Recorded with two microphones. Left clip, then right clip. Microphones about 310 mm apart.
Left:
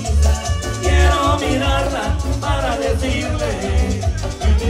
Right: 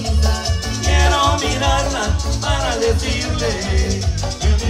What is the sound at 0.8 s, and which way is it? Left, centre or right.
Music, centre.